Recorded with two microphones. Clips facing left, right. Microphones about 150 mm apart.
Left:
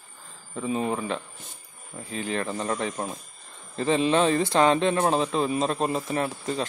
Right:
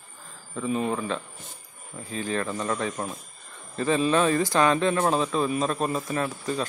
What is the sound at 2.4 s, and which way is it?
A man's voice, 30° left (ahead or behind).